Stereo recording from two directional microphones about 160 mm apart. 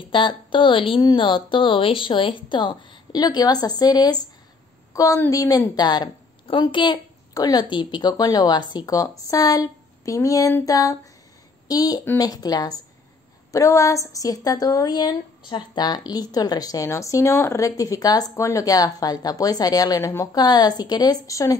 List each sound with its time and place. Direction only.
0.1 s a woman's voice: 30° left (ahead or behind)